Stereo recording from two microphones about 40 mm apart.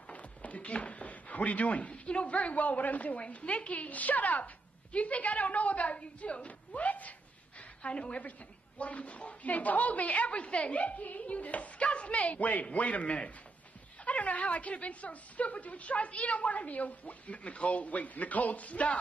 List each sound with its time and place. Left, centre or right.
0.1 s a woman's voice: left